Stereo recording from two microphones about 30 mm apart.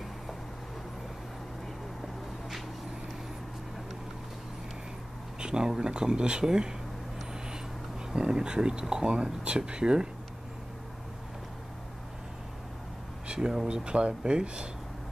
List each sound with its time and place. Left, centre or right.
5.4 s speech: right
8.2 s speech: right
13.4 s speech: centre
13.7 s speech: right